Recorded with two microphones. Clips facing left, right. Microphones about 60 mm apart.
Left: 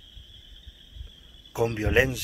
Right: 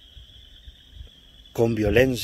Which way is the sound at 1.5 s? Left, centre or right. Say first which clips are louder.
Right 4 dB; left.